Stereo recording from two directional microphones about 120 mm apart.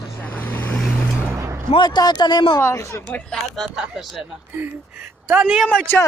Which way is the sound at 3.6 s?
5° right (ahead or behind).